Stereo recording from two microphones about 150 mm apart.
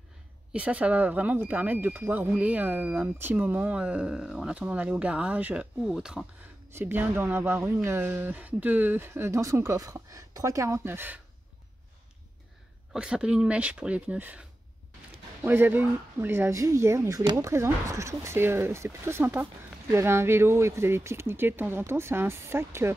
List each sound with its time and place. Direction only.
0.5 s speech: 10° right (ahead or behind)
6.7 s speech: 15° right (ahead or behind)
12.9 s speech: 5° right (ahead or behind)